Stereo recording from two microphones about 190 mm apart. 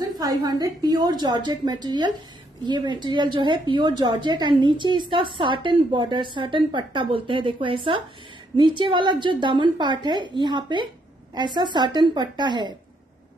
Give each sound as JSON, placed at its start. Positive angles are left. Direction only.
{"t": 0.0, "sound": "a woman's voice", "side_deg": -20}